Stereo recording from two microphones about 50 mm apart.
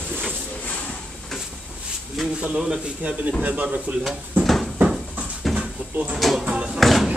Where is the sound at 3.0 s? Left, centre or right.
Right.